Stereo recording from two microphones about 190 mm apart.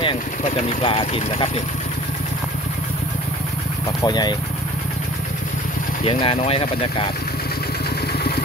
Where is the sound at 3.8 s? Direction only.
20° left (ahead or behind).